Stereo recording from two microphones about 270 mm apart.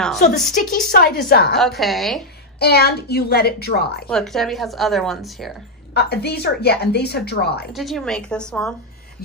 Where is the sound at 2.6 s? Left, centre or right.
Left.